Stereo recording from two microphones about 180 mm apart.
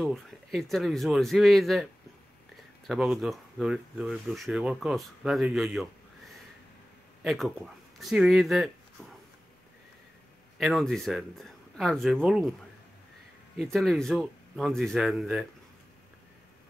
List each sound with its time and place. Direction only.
0.0 s speech: centre (ahead or behind)
2.9 s speech: centre (ahead or behind)
7.2 s speech: centre (ahead or behind)
10.6 s speech: centre (ahead or behind)
13.6 s speech: centre (ahead or behind)